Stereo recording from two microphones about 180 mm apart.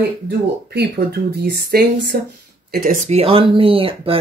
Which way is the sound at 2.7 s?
45° right (ahead or behind).